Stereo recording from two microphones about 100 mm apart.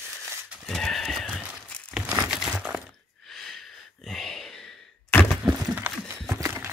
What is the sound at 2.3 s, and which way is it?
Crumpling, 5° right (ahead or behind).